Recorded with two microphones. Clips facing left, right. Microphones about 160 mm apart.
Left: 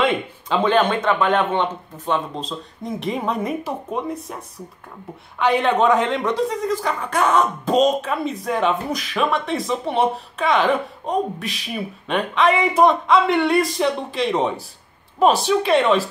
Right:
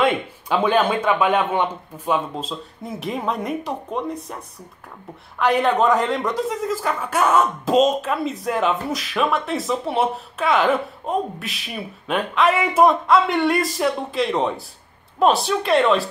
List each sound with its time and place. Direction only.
0.5 s speech: 10° right (ahead or behind)
5.4 s speech: centre (ahead or behind)